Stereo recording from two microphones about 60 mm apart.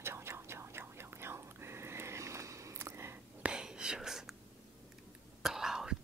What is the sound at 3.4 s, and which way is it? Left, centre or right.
Whispering, centre.